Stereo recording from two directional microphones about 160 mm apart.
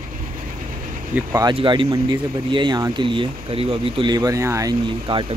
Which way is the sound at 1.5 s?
30° right (ahead or behind).